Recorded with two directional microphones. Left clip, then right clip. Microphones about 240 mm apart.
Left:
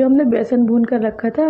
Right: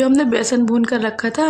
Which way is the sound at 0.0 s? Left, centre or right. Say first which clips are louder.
Left 1 dB; centre.